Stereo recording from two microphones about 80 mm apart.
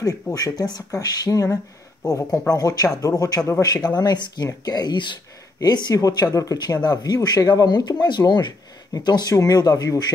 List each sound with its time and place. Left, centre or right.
0.0 s speech: left
3.6 s speech: left
5.6 s speech: left
6.6 s speech: left
9.3 s speech: left